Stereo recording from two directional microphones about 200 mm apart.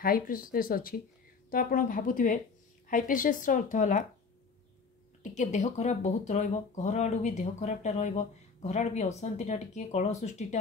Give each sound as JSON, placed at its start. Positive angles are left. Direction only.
{"t": 0.0, "sound": "speech", "side_deg": 45}
{"t": 5.2, "sound": "speech", "side_deg": 35}